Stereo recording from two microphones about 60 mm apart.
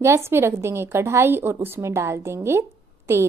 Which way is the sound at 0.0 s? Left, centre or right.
Right.